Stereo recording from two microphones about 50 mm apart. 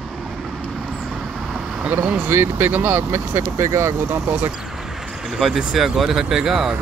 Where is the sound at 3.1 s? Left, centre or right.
Right.